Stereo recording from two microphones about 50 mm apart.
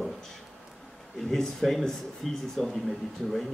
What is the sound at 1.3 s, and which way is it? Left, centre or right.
Speech, centre.